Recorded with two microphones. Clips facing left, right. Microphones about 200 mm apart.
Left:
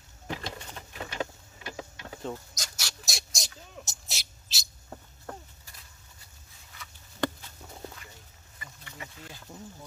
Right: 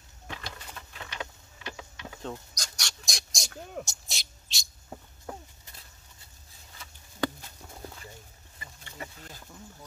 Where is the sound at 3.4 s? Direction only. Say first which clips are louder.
Right 8 dB; 55° right (ahead or behind).